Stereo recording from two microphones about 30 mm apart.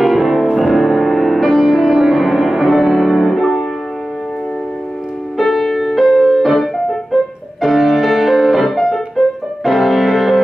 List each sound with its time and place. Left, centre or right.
0.0 s music: centre
5.4 s music: centre
6.4 s music: centre